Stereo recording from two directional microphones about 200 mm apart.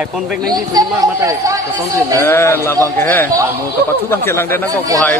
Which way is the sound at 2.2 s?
10° left (ahead or behind).